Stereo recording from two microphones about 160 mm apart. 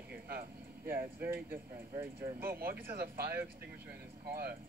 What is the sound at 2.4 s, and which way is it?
Speech, 65° right (ahead or behind).